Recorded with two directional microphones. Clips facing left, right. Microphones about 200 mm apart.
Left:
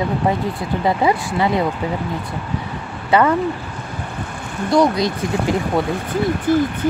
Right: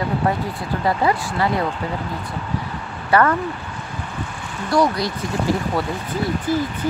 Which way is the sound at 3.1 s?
20° left (ahead or behind).